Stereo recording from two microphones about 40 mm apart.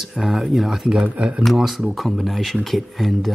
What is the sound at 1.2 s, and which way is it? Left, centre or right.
Speech, right.